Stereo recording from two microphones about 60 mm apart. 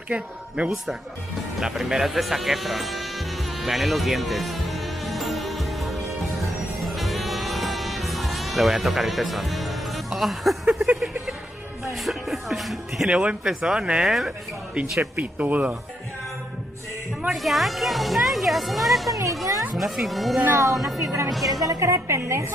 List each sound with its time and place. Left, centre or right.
0.1 s speech: right
1.6 s speech: centre
3.6 s music: centre
10.7 s a sound: centre
12.0 s speech: centre
13.1 s speech: centre
15.1 s speech: right
17.3 s speech: centre
20.5 s a woman's voice: right
21.3 s speech: centre
21.6 s a woman's voice: right